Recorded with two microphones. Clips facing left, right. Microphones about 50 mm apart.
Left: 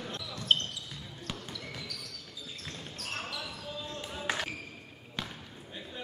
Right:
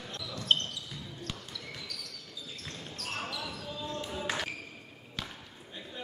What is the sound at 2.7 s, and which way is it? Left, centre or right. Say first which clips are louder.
Basketball bounce: right 1 dB; centre.